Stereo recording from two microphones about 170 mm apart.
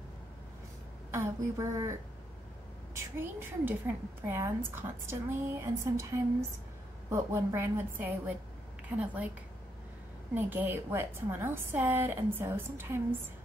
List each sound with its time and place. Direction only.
1.1 s a woman's voice: 15° right (ahead or behind)
7.1 s a woman's voice: 15° right (ahead or behind)
10.3 s a woman's voice: 10° right (ahead or behind)